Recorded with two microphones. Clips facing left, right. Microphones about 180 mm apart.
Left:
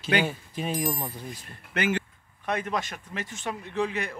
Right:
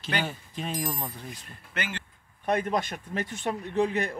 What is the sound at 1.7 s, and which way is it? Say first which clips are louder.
Speech: left 8 dB; 55° left (ahead or behind).